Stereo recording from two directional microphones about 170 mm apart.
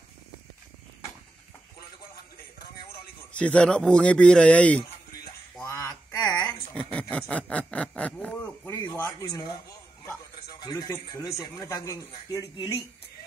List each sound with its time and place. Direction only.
3.3 s speech: 5° left (ahead or behind)
5.6 s a sound: 20° left (ahead or behind)
6.4 s speech: 5° left (ahead or behind)
10.6 s speech: 25° left (ahead or behind)